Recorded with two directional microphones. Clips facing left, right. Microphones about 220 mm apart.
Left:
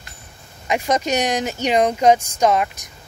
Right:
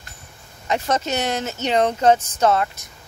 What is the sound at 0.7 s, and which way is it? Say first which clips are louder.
Speech: left 2 dB; 10° left (ahead or behind).